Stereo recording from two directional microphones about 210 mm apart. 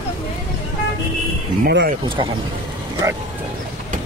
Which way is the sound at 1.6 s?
55° right (ahead or behind).